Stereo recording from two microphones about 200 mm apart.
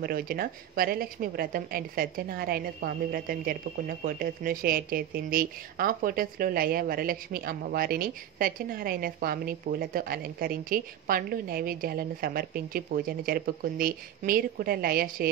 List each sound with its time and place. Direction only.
0.0 s a woman's voice: 45° right (ahead or behind)